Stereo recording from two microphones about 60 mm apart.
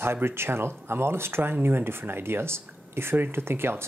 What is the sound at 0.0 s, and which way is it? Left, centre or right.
Speech, right.